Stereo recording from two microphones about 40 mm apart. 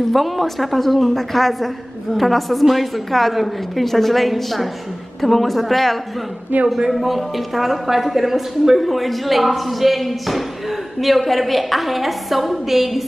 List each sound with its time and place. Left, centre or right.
0.1 s a woman's voice: centre
6.5 s a man's voice: right
6.9 s a woman's voice: centre